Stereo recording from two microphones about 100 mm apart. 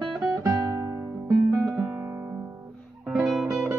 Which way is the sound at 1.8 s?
25° right (ahead or behind).